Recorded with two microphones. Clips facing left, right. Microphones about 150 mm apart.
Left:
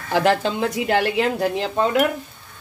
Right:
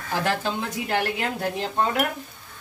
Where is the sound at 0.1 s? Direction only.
85° left.